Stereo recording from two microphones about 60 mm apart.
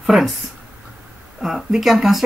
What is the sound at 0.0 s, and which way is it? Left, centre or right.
Speech, centre.